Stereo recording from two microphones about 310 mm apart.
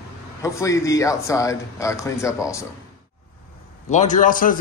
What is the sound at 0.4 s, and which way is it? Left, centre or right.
A man's voice, centre.